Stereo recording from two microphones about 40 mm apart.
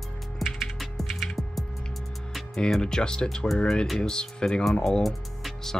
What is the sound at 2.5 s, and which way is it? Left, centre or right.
Speech, centre.